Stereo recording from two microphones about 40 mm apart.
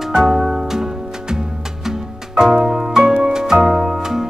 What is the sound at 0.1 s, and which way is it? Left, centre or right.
Music, centre.